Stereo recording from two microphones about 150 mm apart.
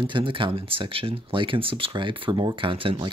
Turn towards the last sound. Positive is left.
turn(degrees=-35)  # may be behind; listen again after turning